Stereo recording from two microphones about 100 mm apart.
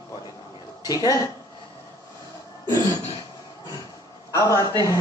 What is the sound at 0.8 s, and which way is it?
Speech, 35° left (ahead or behind).